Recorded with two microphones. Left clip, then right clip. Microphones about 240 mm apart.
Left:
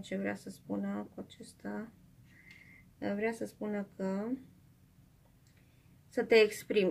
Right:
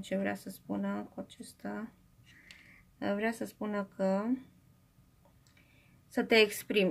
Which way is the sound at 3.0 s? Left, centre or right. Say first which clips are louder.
Right 2 dB; right.